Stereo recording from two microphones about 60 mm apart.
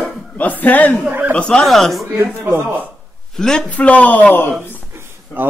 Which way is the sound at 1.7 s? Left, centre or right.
Centre.